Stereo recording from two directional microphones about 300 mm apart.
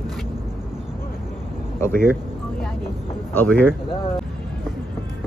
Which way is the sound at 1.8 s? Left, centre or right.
Centre.